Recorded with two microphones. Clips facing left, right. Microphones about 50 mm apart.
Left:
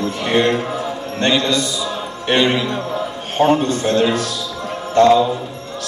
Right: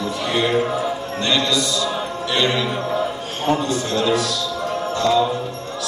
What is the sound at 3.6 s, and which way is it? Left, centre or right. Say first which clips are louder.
Speech: left 5 dB; left.